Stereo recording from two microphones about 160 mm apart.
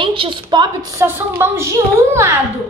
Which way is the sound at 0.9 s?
15° right (ahead or behind).